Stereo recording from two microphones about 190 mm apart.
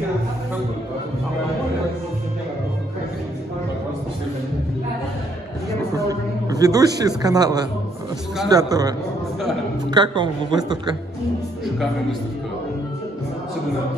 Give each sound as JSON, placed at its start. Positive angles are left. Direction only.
{"t": 5.9, "sound": "a sound", "side_deg": -20}
{"t": 7.0, "sound": "a woman's voice", "side_deg": -20}
{"t": 11.6, "sound": "a man's voice", "side_deg": 0}